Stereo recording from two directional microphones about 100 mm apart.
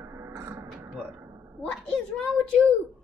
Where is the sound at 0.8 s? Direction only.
25° right (ahead or behind).